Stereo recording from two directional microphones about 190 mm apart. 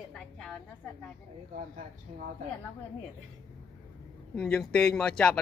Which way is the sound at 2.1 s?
35° right (ahead or behind).